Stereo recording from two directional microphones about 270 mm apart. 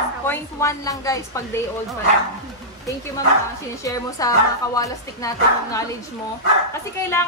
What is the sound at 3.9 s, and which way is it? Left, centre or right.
Speech, centre.